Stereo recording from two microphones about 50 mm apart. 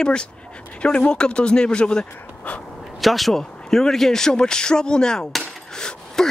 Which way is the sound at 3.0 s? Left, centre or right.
Centre.